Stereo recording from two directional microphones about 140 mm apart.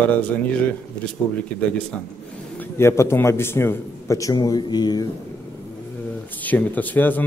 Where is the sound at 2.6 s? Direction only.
20° left (ahead or behind).